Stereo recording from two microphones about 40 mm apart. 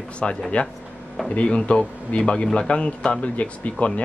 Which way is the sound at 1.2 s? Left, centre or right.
Left.